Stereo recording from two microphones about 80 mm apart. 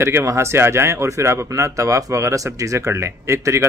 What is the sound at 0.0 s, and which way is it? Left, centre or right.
A man's voice, right.